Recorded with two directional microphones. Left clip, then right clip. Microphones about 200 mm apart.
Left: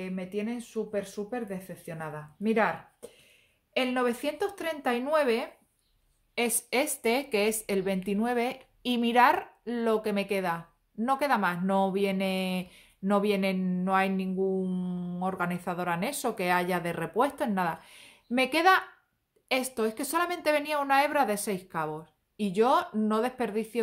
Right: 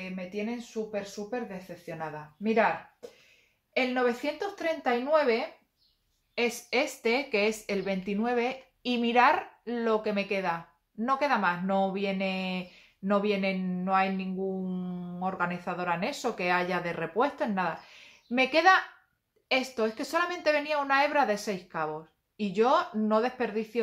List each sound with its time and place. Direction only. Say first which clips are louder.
0.0 s speech: left 1 dB; 45° left (ahead or behind)